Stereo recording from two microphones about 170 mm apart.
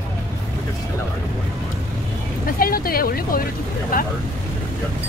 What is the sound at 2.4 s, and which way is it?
Speech, 60° left (ahead or behind).